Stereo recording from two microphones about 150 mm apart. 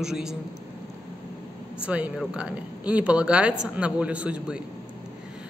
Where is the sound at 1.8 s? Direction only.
10° right (ahead or behind).